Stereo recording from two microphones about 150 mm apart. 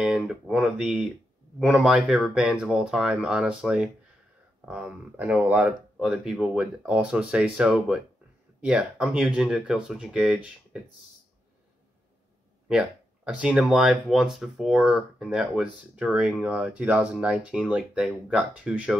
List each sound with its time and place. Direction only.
0.0 s speech: 5° right (ahead or behind)
12.6 s speech: 5° right (ahead or behind)